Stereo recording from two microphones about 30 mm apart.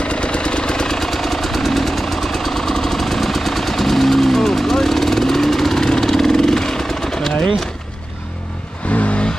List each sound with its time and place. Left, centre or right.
0.0 s vehicle: left
0.8 s vehicle: centre
8.9 s vehicle: left